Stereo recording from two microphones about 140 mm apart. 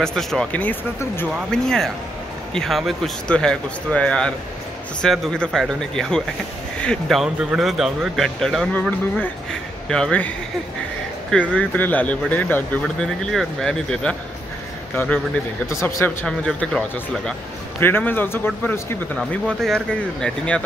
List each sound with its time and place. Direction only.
0.0 s speech: centre (ahead or behind)
11.5 s speech: 10° left (ahead or behind)
12.8 s speech: centre (ahead or behind)
15.0 s speech: 15° left (ahead or behind)
16.3 s speech: 5° left (ahead or behind)
17.7 s speech: 15° left (ahead or behind)
19.1 s speech: 5° left (ahead or behind)